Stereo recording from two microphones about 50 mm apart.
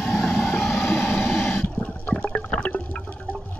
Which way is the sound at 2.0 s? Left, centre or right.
Left.